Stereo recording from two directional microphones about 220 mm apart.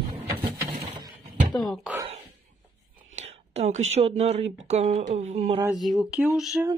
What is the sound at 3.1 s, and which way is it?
Speech, 30° right (ahead or behind).